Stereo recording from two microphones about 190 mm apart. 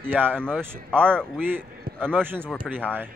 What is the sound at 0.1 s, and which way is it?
Speech, 10° right (ahead or behind).